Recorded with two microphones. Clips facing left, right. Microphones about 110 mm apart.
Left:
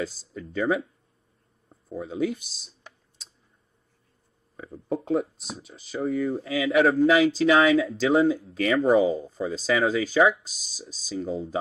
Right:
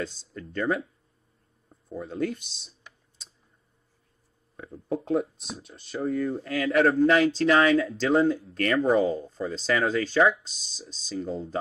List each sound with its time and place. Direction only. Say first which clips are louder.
0.0 s speech: left 2 dB; 5° left (ahead or behind)
1.9 s speech: left 2 dB; centre (ahead or behind)
4.6 s speech: left 1 dB; 5° left (ahead or behind)